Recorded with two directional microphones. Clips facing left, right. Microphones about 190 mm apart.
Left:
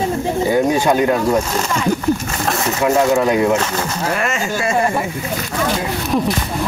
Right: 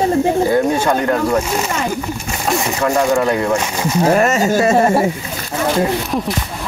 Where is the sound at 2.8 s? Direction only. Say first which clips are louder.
Left 1 dB; 5° left (ahead or behind).